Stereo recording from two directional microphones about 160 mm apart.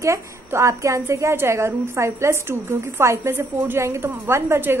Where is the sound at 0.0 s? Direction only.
15° right (ahead or behind).